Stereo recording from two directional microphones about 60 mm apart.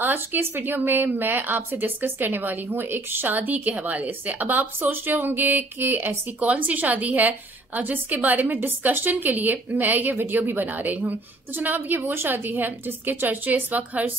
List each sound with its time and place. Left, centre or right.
0.0 s a woman's voice: right